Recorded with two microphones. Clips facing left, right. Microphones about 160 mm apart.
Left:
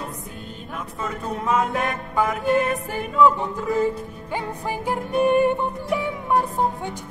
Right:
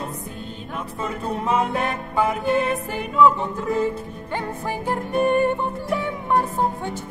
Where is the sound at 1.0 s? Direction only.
30° right (ahead or behind).